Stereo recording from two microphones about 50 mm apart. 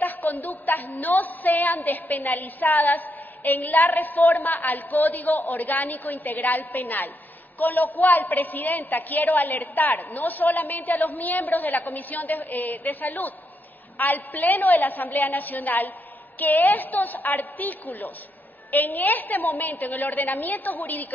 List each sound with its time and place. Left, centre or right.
0.0 s a woman's voice: left